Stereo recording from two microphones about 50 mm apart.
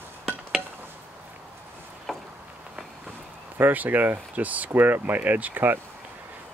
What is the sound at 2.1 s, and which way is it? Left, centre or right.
Vehicle, centre.